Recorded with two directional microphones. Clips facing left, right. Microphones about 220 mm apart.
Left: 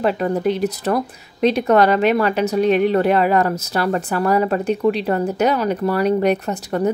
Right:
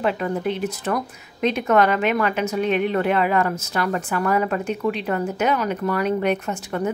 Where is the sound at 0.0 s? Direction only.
40° left (ahead or behind).